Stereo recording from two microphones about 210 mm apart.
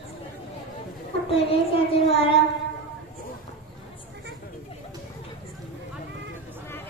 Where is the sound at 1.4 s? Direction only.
25° left (ahead or behind).